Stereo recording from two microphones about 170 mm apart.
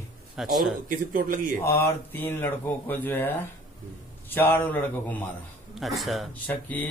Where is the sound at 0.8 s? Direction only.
55° right (ahead or behind).